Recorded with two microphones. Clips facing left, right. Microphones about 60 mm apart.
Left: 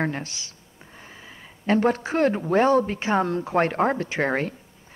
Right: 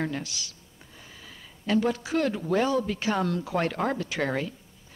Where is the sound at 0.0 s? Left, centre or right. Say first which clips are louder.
Left 4 dB; left.